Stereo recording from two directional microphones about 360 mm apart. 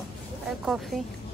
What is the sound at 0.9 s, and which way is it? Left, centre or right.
Speech, centre.